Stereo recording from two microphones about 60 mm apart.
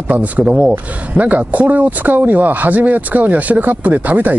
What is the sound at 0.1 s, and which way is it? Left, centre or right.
Speech, right.